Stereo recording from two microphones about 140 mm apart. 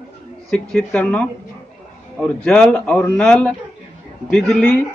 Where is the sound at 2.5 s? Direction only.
5° left (ahead or behind).